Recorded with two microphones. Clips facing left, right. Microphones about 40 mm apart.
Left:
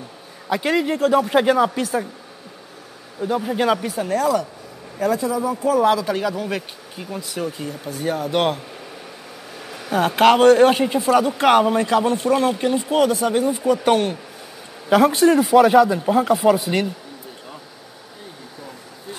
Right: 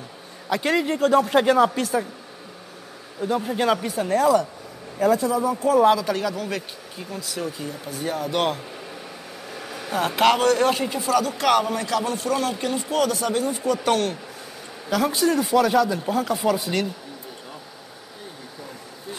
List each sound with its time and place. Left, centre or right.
0.5 s speech: centre
3.2 s a man's voice: centre
9.7 s a man's voice: centre
14.9 s speech: left
15.5 s a man's voice: left